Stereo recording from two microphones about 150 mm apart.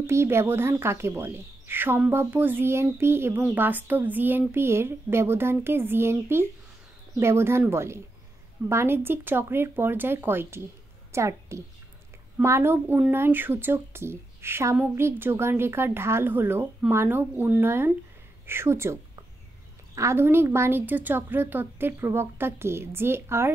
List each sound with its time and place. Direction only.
0.0 s a woman's voice: 15° right (ahead or behind)
20.0 s speech: 15° right (ahead or behind)